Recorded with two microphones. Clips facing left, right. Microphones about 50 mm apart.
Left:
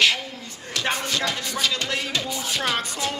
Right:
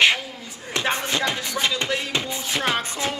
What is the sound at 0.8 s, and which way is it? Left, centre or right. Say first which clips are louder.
Music: right 2 dB; right.